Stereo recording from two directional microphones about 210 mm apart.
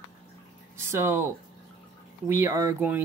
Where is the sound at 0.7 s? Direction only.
15° right (ahead or behind).